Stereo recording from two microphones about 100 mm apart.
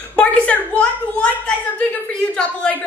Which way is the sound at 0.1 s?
15° left (ahead or behind).